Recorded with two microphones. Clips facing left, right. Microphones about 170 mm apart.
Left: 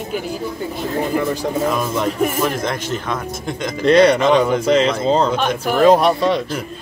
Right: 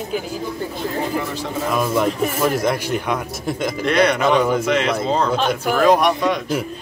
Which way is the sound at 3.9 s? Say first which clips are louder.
Left 5 dB; 30° left (ahead or behind).